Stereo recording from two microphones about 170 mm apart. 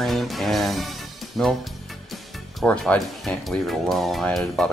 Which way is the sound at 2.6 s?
5° left (ahead or behind).